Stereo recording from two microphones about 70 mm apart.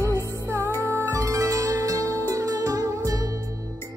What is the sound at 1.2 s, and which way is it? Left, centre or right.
Music, right.